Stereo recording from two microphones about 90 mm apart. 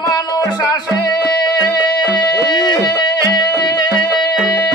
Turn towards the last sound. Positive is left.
turn(degrees=50)  # may be behind; listen again after turning